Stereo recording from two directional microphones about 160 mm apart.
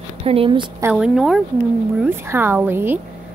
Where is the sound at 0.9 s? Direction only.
5° right (ahead or behind).